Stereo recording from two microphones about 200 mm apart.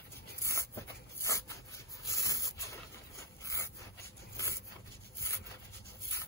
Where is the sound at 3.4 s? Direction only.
15° left (ahead or behind).